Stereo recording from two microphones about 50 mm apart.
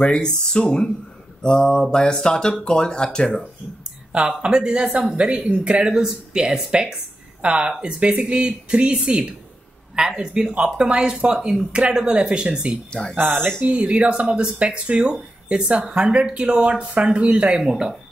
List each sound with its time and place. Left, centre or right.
0.0 s speech: left
4.4 s speech: centre
13.0 s speech: centre
13.6 s speech: right